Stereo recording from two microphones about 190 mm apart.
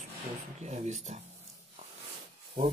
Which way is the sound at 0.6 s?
35° right (ahead or behind).